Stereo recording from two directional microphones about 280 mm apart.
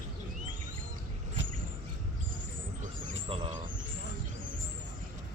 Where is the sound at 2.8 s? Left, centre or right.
Centre.